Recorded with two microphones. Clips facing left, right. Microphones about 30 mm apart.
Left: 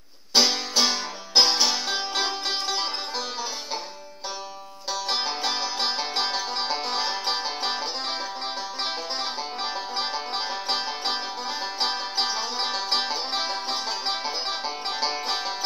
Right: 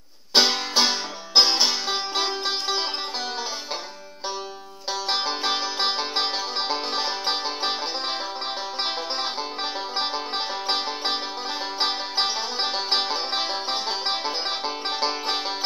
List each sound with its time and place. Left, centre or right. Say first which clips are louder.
0.3 s music: right 1 dB; right; by 2.8 s centre
5.1 s music: right 2 dB; centre